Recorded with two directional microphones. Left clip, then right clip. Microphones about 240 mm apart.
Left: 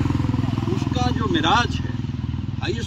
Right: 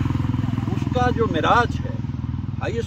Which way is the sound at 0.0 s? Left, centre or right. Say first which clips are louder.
Left 2 dB; left.